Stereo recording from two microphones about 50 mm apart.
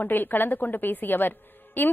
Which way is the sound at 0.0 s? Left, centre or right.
Left.